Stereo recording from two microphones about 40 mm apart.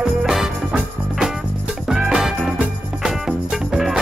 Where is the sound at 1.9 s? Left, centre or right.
Centre.